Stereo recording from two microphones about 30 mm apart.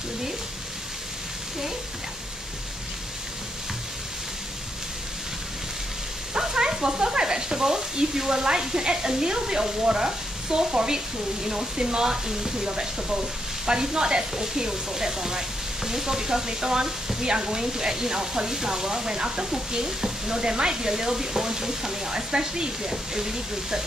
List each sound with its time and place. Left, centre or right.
6.3 s sizzle: centre
8.5 s speech: right